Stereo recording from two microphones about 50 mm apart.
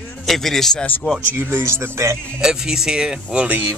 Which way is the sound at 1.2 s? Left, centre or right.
Right.